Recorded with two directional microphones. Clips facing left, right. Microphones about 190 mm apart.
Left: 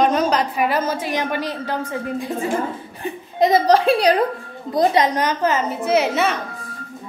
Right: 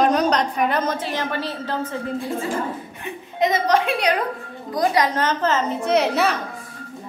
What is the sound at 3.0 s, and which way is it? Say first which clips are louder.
A woman's voice: left 4 dB; 35° left (ahead or behind).